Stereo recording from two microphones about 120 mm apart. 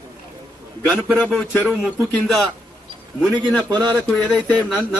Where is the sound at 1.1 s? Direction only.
10° left (ahead or behind).